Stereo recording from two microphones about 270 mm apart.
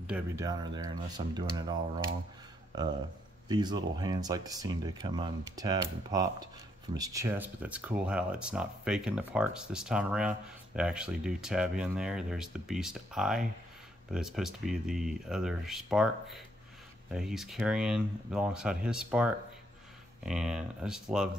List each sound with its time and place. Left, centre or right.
0.0 s speech: centre
2.7 s speech: centre